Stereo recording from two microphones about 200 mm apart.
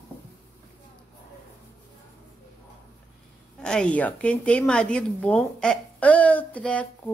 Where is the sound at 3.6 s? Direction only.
5° left (ahead or behind).